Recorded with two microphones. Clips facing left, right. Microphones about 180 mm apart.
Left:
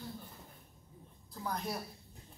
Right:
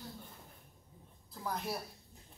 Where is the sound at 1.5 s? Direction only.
5° right (ahead or behind).